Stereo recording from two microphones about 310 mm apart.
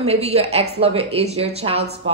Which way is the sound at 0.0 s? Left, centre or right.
Centre.